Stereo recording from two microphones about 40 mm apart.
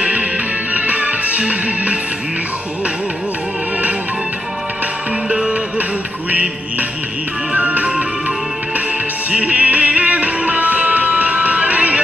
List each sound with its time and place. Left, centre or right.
0.0 s music: right
7.5 s music: right
9.3 s music: right